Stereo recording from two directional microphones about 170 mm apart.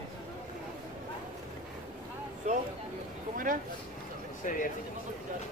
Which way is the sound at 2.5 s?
45° right (ahead or behind).